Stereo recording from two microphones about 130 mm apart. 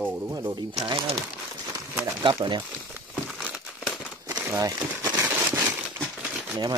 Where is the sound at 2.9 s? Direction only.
5° right (ahead or behind).